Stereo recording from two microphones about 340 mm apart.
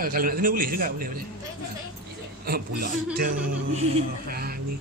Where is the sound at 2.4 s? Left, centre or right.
Right.